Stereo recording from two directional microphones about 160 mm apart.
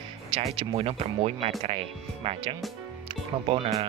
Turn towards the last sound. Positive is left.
turn(degrees=-35)  # may be behind; listen again after turning